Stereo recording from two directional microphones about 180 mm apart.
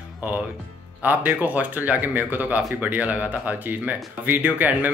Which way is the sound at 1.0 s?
10° right (ahead or behind).